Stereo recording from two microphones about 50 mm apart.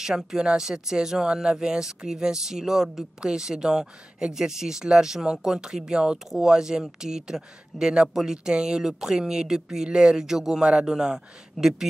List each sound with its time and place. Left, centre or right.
0.0 s speech: centre
10.6 s speech: right